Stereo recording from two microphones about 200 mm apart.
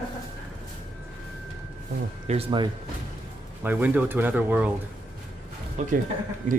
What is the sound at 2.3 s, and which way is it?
Speech, 30° right (ahead or behind).